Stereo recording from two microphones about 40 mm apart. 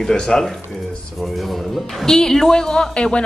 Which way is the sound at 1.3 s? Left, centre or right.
Centre.